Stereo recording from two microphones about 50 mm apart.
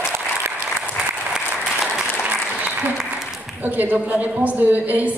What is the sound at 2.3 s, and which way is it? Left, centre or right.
Applause, right.